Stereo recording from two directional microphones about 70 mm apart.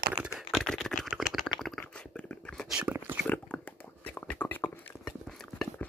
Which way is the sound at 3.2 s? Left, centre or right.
Centre.